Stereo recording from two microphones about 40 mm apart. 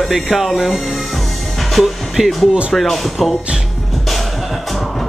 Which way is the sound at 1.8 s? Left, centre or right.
Centre.